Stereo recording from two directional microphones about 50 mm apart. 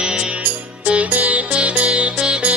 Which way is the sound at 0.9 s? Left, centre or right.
Right.